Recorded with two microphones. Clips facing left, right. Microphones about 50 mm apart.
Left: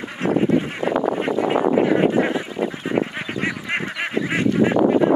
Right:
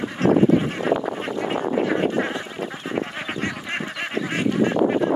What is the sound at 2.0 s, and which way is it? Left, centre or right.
Goose, centre.